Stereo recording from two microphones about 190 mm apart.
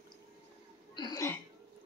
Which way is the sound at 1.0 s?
20° left (ahead or behind).